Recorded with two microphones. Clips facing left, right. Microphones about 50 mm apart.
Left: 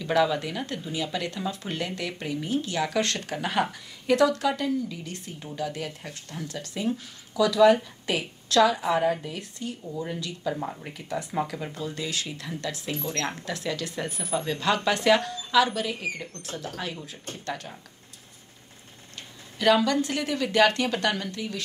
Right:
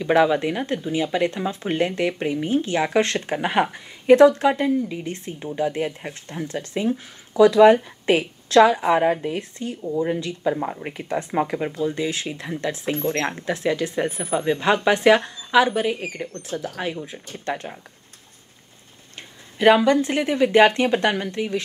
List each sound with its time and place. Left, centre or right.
0.0 s speech: right
12.9 s speech: right
13.2 s speech: right
19.1 s speech: right